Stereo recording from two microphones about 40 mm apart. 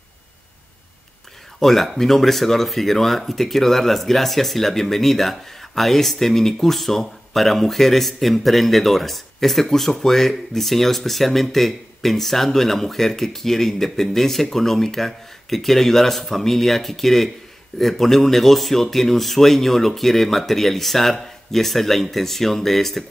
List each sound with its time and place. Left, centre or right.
1.6 s speech: centre